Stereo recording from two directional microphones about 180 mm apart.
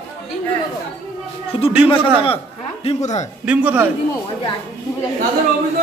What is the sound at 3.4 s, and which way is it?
Speech, 10° right (ahead or behind).